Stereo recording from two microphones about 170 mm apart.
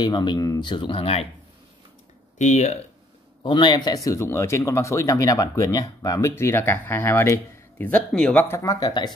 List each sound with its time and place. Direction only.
0.0 s speech: 25° left (ahead or behind)
2.3 s speech: 45° left (ahead or behind)
3.4 s speech: 25° left (ahead or behind)